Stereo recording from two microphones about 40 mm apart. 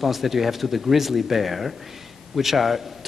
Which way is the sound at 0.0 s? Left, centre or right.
Centre.